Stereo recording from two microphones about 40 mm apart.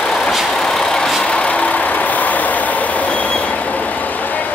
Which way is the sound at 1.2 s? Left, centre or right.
Left.